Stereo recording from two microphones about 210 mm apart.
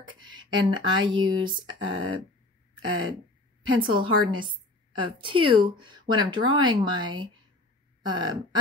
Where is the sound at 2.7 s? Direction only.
70° right (ahead or behind).